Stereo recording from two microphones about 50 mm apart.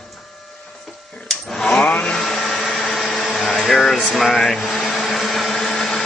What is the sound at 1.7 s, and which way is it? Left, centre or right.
Vehicle, left.